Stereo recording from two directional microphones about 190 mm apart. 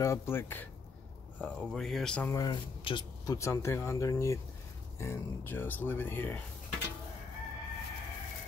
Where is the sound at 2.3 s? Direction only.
20° left (ahead or behind).